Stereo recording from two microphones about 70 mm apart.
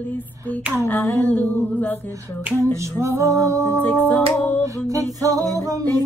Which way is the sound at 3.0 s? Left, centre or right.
Right.